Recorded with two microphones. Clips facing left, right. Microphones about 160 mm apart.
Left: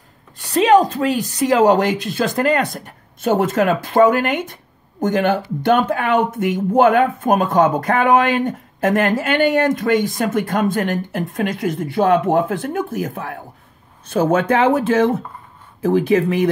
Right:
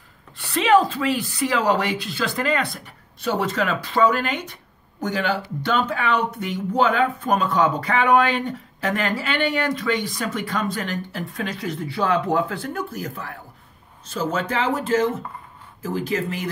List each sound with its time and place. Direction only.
0.4 s speech: 40° left (ahead or behind); by 16.4 s 60° left (ahead or behind)